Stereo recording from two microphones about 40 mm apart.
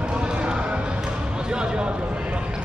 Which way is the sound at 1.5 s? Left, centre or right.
Right.